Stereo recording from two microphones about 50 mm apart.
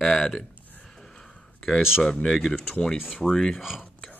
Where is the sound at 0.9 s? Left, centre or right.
Centre.